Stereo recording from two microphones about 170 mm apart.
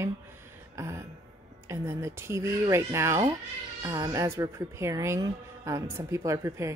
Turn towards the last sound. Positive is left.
turn(degrees=-20)  # may be behind; listen again after turning